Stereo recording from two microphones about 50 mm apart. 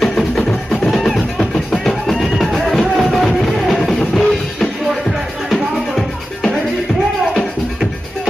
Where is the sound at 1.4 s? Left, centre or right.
Centre.